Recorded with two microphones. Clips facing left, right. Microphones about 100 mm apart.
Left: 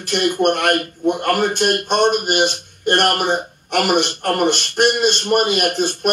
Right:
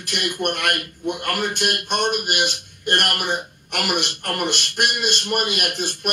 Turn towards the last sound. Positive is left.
turn(degrees=30)  # may be behind; listen again after turning